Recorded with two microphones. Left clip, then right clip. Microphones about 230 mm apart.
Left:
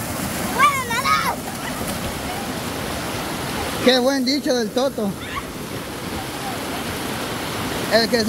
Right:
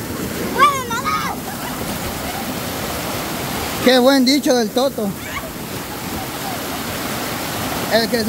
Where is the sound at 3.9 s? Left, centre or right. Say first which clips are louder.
Right 5 dB; centre.